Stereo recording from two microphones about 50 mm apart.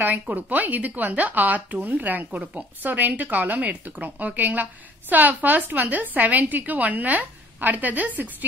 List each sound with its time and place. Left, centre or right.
0.0 s speech: right